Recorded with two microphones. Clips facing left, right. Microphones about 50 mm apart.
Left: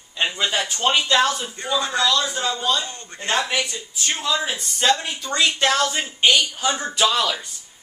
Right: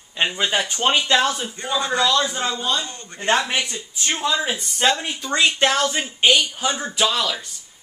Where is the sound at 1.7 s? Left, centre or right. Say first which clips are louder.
Right 1 dB; right.